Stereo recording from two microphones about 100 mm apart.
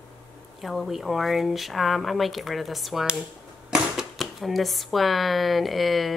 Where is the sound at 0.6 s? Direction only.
Centre (ahead or behind).